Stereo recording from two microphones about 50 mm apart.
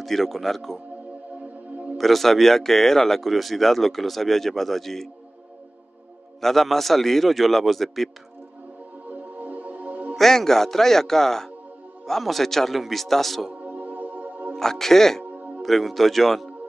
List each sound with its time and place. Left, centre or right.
0.0 s speech: centre
2.0 s speech: centre
6.4 s speech: centre
9.1 s music: right
10.1 s speech: centre
13.5 s music: right
14.6 s speech: centre
15.3 s music: right
15.6 s speech: centre